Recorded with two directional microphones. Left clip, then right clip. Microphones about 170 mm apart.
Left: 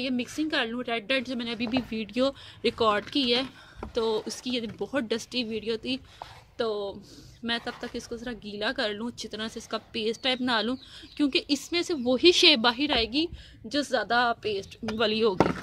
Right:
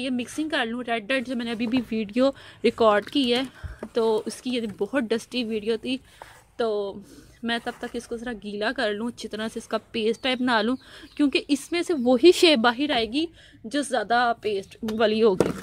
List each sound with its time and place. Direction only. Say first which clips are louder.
0.0 s speech: right 1 dB; 40° right (ahead or behind)